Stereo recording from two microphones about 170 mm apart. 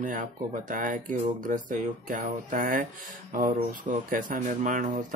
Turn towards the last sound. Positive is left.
turn(degrees=-50)  # may be behind; listen again after turning